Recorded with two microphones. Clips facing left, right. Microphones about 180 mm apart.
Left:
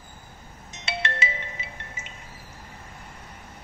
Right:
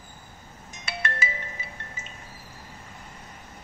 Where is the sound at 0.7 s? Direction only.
25° left (ahead or behind).